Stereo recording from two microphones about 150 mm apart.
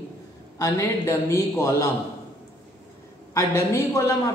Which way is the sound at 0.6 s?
15° left (ahead or behind).